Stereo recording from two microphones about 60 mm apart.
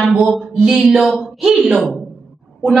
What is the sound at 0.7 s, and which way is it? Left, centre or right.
Speech, centre.